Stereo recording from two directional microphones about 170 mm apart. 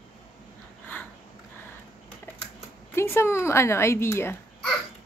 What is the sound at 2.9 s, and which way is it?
A woman's voice, 15° left (ahead or behind).